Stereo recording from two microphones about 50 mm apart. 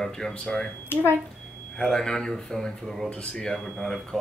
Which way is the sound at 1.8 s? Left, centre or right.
Centre.